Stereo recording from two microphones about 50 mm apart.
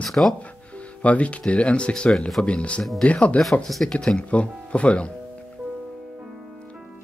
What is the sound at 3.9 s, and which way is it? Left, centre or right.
Speech, centre.